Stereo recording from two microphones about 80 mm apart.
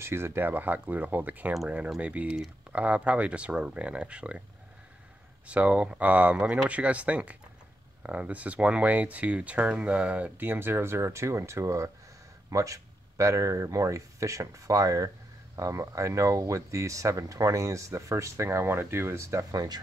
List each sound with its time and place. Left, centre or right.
0.0 s speech: right; by 4.4 s centre
5.5 s speech: centre; by 19.4 s right
19.5 s speech: right